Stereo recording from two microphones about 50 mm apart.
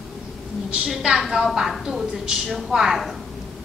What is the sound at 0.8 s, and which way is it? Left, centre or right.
A woman's voice, centre.